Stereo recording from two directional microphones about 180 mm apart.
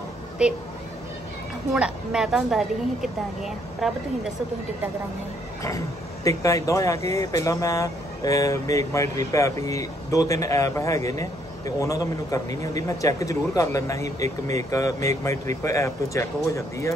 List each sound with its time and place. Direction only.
0.4 s a woman's voice: 5° right (ahead or behind)
1.7 s a woman's voice: 5° right (ahead or behind)
6.2 s a man's voice: 20° left (ahead or behind)